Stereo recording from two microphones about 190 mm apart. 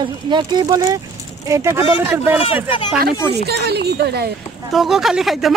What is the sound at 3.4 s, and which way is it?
Speech, 60° right (ahead or behind).